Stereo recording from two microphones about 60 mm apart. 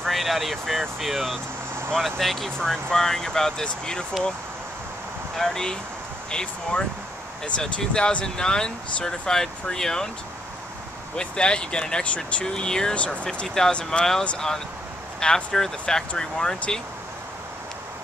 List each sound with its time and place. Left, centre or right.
0.0 s speech: centre
5.4 s speech: centre
11.1 s speech: centre
14.2 s speech: centre